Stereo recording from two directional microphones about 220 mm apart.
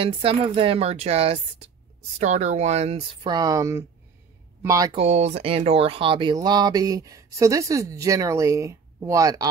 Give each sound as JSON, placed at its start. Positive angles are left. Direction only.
{"t": 0.0, "sound": "speech", "side_deg": -25}
{"t": 3.3, "sound": "speech", "side_deg": -15}
{"t": 4.9, "sound": "speech", "side_deg": -30}